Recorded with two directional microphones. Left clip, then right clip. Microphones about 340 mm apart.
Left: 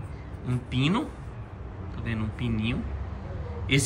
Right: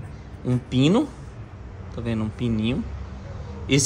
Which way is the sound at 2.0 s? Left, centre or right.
Centre.